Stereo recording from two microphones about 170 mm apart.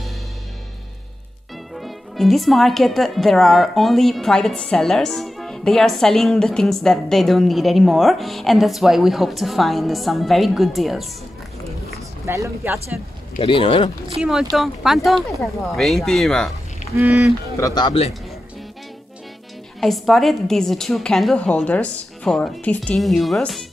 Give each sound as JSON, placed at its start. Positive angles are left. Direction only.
{"t": 1.8, "sound": "speech", "side_deg": 0}
{"t": 12.3, "sound": "speech", "side_deg": -15}
{"t": 13.4, "sound": "speech", "side_deg": 30}
{"t": 14.0, "sound": "speech", "side_deg": 0}
{"t": 16.8, "sound": "goose", "side_deg": 45}
{"t": 17.6, "sound": "speech", "side_deg": 20}
{"t": 19.8, "sound": "speech", "side_deg": 0}